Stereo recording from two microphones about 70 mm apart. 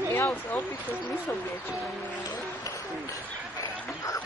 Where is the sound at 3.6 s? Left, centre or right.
Left.